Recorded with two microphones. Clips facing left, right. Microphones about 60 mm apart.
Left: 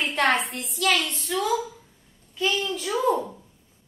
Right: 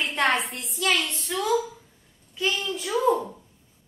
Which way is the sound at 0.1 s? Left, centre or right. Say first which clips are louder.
Left 1 dB; centre.